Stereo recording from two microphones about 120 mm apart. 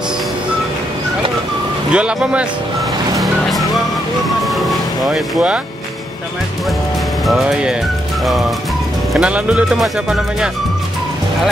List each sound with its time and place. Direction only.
1.9 s speech: 10° right (ahead or behind)
4.5 s vehicle: centre (ahead or behind)
7.2 s speech: 5° right (ahead or behind)